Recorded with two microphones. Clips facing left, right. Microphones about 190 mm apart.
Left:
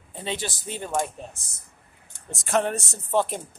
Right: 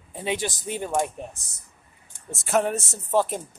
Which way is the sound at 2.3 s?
5° right (ahead or behind).